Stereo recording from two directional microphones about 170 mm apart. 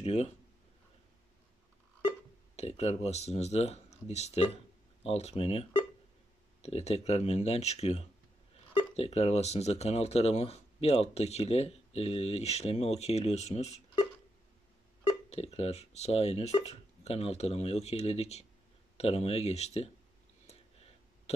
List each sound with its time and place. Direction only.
0.0 s a sound: 40° left (ahead or behind)
2.0 s speech: 35° left (ahead or behind)
15.0 s speech: 40° left (ahead or behind)